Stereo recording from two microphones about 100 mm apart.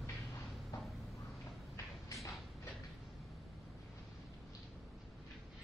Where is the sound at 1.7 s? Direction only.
30° left (ahead or behind).